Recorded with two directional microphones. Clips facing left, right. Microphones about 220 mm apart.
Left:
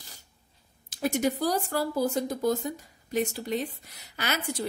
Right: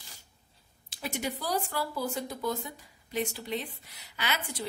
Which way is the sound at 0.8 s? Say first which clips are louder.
Left 8 dB; 45° left (ahead or behind).